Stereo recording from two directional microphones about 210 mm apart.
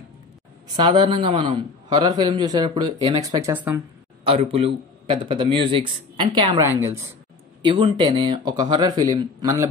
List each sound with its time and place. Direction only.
0.7 s a man's voice: 20° right (ahead or behind)
4.3 s a man's voice: 30° right (ahead or behind)